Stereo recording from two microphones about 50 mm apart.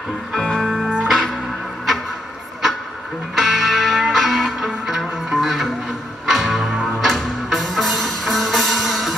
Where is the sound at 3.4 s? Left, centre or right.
Centre.